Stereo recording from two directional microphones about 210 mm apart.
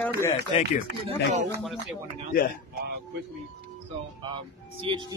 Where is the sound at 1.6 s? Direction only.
Centre (ahead or behind).